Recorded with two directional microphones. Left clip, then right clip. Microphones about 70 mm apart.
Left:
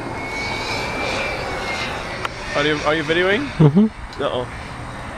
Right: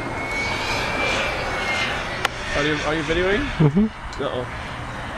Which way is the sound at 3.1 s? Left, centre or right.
Left.